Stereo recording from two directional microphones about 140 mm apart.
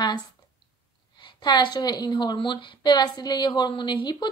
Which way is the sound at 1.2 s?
30° left (ahead or behind).